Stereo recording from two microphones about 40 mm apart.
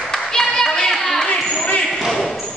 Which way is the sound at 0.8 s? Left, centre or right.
Centre.